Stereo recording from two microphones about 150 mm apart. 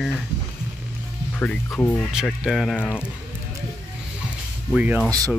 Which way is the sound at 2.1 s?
5° right (ahead or behind).